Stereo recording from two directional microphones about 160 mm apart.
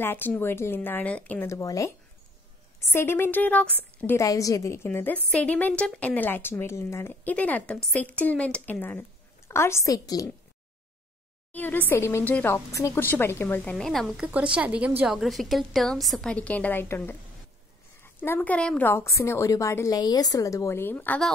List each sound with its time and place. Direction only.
0.0 s a woman's voice: 15° left (ahead or behind)
11.5 s a woman's voice: 10° left (ahead or behind)